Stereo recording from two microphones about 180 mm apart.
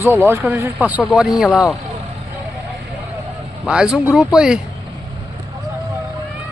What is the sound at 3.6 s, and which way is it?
Speech, 5° right (ahead or behind).